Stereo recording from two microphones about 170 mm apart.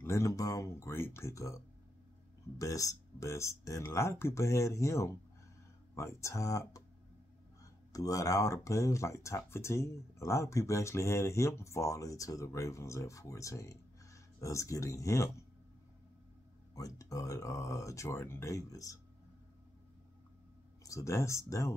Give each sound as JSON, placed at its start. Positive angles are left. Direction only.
{"t": 0.0, "sound": "speech", "side_deg": 15}
{"t": 2.6, "sound": "speech", "side_deg": 20}
{"t": 7.9, "sound": "speech", "side_deg": 20}
{"t": 16.7, "sound": "speech", "side_deg": 20}
{"t": 20.8, "sound": "speech", "side_deg": 20}